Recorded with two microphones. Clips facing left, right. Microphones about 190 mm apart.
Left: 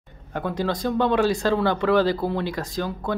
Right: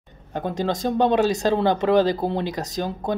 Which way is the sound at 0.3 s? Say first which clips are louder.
Right 1 dB; 20° right (ahead or behind).